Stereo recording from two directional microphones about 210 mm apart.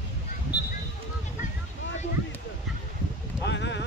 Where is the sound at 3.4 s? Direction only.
55° left (ahead or behind).